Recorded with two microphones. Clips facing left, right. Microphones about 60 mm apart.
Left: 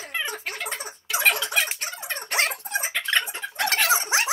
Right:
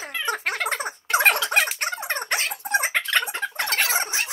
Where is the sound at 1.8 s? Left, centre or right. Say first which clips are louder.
Right 6 dB; right.